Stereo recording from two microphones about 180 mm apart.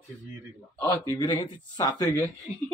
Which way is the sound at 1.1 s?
25° left (ahead or behind).